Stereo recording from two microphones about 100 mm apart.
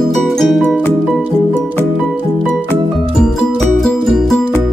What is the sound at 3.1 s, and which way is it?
Music, 5° left (ahead or behind).